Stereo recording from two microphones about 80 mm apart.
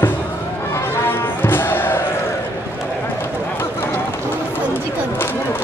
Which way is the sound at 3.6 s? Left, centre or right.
Left.